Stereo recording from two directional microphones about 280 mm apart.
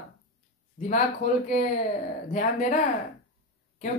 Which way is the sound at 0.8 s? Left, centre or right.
Left.